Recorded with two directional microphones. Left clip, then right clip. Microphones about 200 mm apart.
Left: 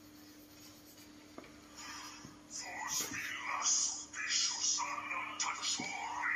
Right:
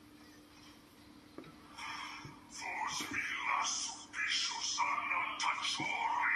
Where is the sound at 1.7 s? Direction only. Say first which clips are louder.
Right 5 dB; 30° right (ahead or behind).